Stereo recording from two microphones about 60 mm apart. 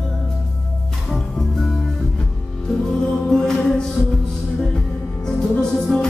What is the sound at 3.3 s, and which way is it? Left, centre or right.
Music, centre.